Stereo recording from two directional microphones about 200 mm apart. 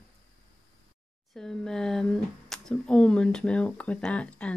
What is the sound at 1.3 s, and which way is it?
Speech, 5° left (ahead or behind).